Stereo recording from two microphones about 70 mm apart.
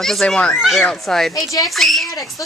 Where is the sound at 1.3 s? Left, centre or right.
Left.